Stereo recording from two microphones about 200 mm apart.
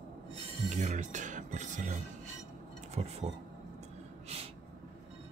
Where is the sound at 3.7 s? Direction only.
30° right (ahead or behind).